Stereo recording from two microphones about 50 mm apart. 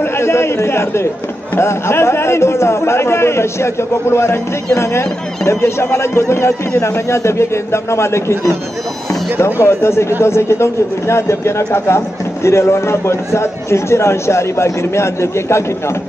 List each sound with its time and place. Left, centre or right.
0.0 s a man's voice: left
9.4 s a man's voice: left